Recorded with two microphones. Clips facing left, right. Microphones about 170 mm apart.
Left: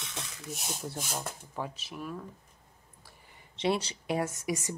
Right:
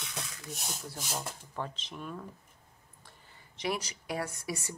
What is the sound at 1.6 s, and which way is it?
Speech, 10° left (ahead or behind).